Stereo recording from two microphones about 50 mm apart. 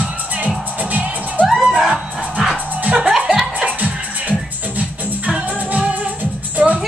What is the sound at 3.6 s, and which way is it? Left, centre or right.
Music, right.